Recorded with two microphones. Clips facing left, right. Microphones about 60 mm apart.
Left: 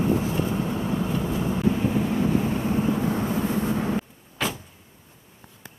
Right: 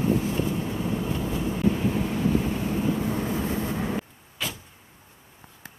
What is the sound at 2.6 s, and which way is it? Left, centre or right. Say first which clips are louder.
Vehicle: left 2 dB; left.